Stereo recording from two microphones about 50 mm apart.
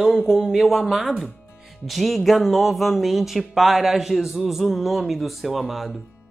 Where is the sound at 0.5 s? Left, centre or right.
Centre.